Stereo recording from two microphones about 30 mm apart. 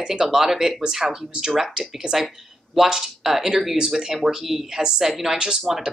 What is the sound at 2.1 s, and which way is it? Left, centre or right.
Speech, right.